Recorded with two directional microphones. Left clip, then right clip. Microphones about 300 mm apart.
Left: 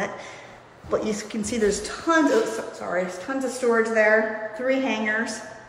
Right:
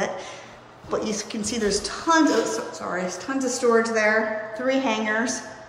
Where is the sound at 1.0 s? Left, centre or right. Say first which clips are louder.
Even; centre.